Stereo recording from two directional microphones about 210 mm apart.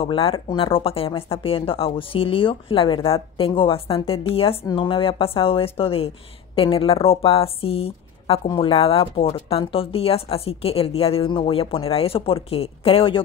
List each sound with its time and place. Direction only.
0.0 s speech: 25° left (ahead or behind)